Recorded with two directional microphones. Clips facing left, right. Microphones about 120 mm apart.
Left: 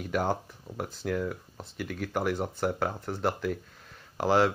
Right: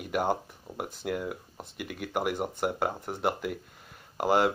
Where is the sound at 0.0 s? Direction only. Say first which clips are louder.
Even; 10° right (ahead or behind).